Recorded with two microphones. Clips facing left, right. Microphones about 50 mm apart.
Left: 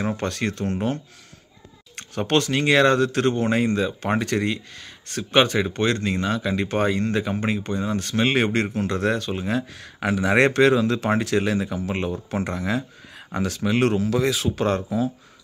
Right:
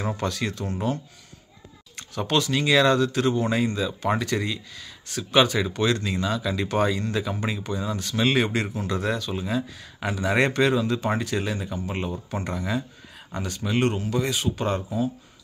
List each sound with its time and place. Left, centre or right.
0.2 s speech: left
13.3 s speech: left
13.7 s speech: left